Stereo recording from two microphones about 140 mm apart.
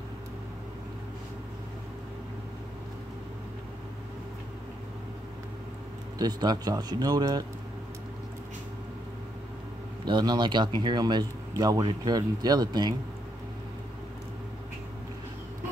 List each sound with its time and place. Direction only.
6.1 s a man's voice: 30° right (ahead or behind)
10.0 s speech: 30° right (ahead or behind)